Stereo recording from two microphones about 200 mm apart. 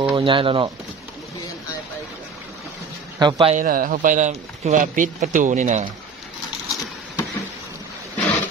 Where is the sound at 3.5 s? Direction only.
45° right (ahead or behind).